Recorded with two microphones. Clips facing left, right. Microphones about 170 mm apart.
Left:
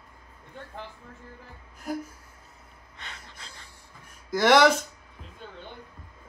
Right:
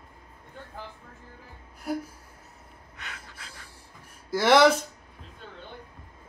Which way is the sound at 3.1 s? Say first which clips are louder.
Right 1 dB; 5° right (ahead or behind).